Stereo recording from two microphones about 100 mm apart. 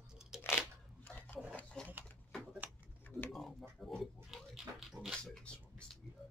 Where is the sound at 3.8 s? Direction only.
Centre (ahead or behind).